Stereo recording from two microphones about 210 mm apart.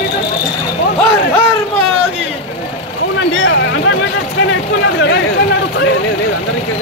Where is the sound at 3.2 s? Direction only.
65° left (ahead or behind).